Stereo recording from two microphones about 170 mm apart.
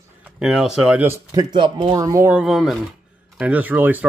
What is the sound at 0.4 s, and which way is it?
Speech, 5° right (ahead or behind).